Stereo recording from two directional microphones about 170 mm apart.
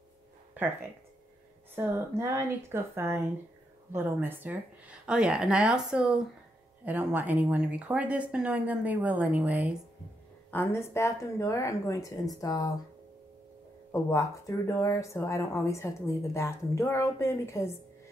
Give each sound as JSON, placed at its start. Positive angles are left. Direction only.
{"t": 1.8, "sound": "speech", "side_deg": -15}
{"t": 10.5, "sound": "speech", "side_deg": 15}
{"t": 14.1, "sound": "speech", "side_deg": 20}